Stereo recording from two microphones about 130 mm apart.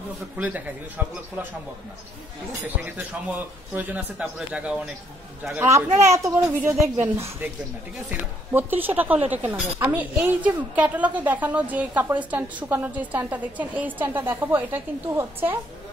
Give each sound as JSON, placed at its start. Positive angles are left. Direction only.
{"t": 0.4, "sound": "a woman's voice", "side_deg": -10}
{"t": 2.6, "sound": "a woman's voice", "side_deg": -15}
{"t": 5.6, "sound": "a child's voice", "side_deg": -20}